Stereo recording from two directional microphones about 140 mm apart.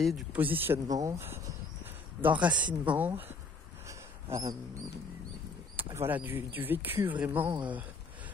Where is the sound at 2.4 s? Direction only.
10° right (ahead or behind).